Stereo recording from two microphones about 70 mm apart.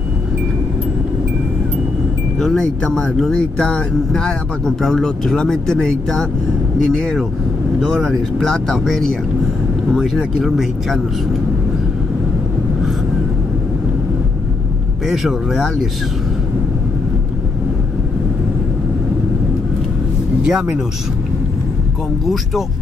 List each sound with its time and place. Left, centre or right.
2.3 s speech: centre
15.0 s speech: centre
20.4 s speech: centre